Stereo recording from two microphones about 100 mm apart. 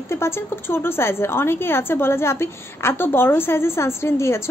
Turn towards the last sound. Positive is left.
turn(degrees=25)  # may be behind; listen again after turning